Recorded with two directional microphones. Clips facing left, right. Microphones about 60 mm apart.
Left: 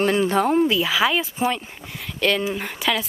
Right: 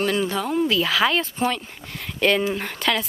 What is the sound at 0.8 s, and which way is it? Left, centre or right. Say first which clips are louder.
Speech: even; centre.